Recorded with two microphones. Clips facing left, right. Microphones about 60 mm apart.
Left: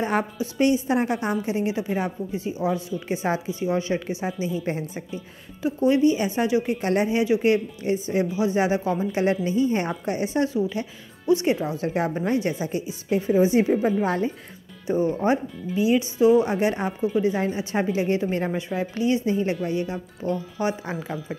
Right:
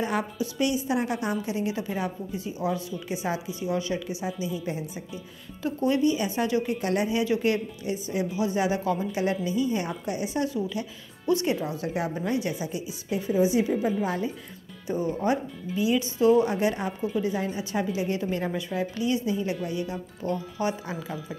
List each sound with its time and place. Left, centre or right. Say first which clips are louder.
0.0 s a woman's voice: left 3 dB; left
5.6 s speech: left 5 dB; left
7.8 s a woman's voice: left 5 dB; left
9.1 s a woman's voice: left 4 dB; left
14.9 s a woman's voice: left 4 dB; left